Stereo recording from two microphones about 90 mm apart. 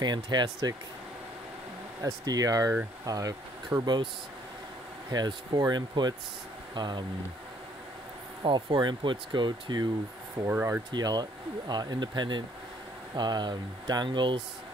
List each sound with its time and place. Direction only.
0.0 s speech: 55° right (ahead or behind)
2.0 s speech: 35° right (ahead or behind); by 4.1 s 55° right (ahead or behind)
5.1 s speech: 50° right (ahead or behind)
8.5 s speech: 60° right (ahead or behind)
10.4 s speech: 30° right (ahead or behind)
10.9 s speech: 50° right (ahead or behind)